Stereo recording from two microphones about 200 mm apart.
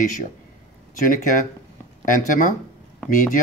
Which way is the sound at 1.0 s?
45° left (ahead or behind).